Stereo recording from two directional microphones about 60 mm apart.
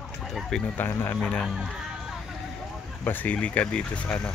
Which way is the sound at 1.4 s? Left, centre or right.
Centre.